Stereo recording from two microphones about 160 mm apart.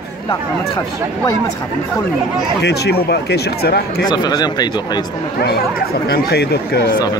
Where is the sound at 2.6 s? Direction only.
90° left.